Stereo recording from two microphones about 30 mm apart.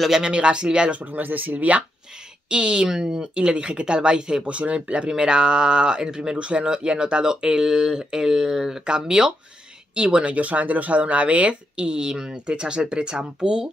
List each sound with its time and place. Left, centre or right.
0.2 s speech: right
1.1 s speech: right
2.5 s speech: right
4.5 s speech: right
5.1 s speech: right
6.3 s speech: right
7.6 s speech: centre
8.8 s speech: right
10.3 s speech: right